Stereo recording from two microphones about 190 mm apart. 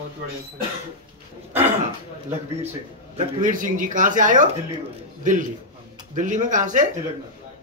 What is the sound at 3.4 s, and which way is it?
Speech, 45° right (ahead or behind).